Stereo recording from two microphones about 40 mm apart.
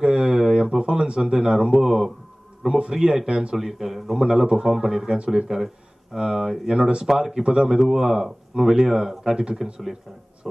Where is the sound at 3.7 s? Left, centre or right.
Centre.